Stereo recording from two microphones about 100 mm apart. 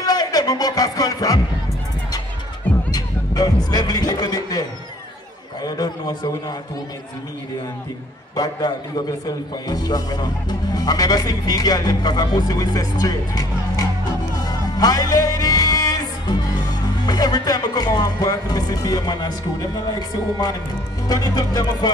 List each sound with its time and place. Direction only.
0.0 s speech: 40° left (ahead or behind)
2.9 s music: 40° left (ahead or behind)
3.7 s speech: 40° left (ahead or behind)
8.4 s speech: 40° left (ahead or behind)
14.4 s music: 40° left (ahead or behind)
17.0 s speech: 40° left (ahead or behind)